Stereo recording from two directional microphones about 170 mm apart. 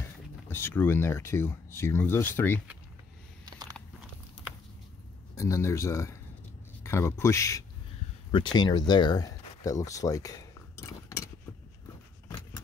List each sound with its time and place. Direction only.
0.5 s speech: 15° left (ahead or behind)
5.3 s speech: 15° left (ahead or behind)